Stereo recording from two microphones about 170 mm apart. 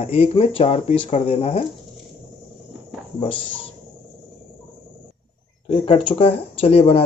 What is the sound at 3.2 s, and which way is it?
Speech, 30° left (ahead or behind).